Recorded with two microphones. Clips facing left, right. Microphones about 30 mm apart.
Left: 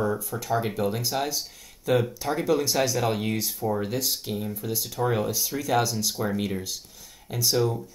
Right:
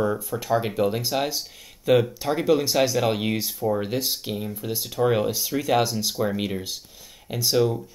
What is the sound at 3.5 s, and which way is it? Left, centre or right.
Speech, centre.